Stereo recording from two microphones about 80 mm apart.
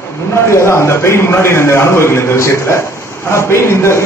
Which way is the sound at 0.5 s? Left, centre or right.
Left.